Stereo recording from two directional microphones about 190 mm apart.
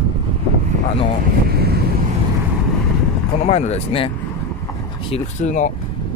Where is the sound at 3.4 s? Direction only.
35° left (ahead or behind).